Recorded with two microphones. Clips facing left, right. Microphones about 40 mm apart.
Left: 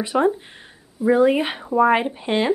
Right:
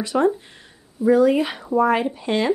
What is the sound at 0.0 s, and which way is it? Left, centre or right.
Speech, centre.